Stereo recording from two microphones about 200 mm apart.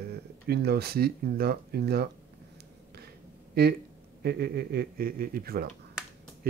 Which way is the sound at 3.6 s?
50° right (ahead or behind).